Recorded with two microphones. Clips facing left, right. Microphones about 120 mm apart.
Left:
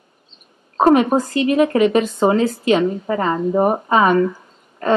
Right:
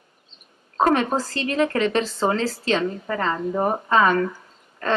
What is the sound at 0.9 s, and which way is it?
A woman's voice, 15° left (ahead or behind).